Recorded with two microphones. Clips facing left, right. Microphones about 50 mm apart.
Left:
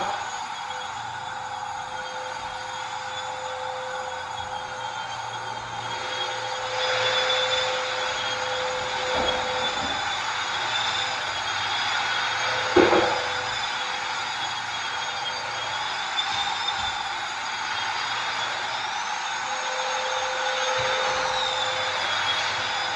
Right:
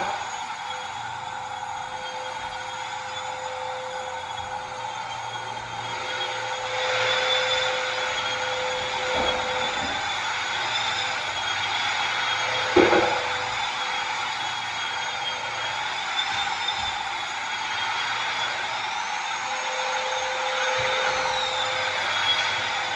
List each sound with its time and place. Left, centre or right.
6.8 s vehicle: right
11.7 s a sound: right
19.8 s vehicle: right